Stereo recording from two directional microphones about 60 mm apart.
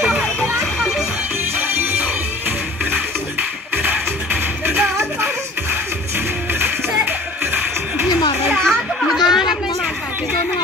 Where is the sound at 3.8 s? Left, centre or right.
Right.